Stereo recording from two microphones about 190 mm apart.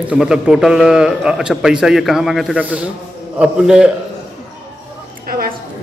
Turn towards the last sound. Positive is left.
turn(degrees=-50)  # may be behind; listen again after turning